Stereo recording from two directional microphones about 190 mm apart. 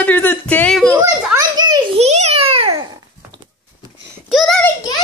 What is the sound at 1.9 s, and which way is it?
Babbling, 35° right (ahead or behind).